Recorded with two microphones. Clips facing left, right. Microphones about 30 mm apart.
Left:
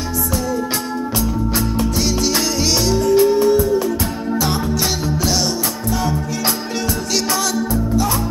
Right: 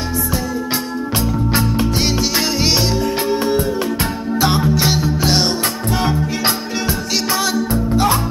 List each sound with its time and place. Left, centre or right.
1.5 s music: right
5.2 s music: right
7.7 s music: right